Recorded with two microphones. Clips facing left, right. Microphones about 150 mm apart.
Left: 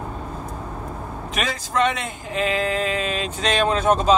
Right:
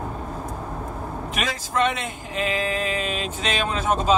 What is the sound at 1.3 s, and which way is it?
Speech, 5° right (ahead or behind).